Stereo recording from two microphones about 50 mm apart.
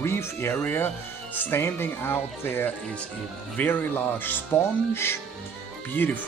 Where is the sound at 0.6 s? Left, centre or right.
Left.